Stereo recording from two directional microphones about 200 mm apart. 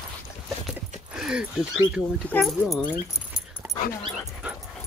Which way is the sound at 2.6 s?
5° right (ahead or behind).